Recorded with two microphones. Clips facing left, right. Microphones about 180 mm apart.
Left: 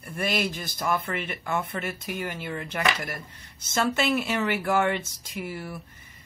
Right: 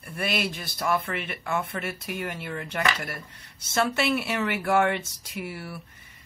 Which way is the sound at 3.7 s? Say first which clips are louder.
Even; 10° right (ahead or behind).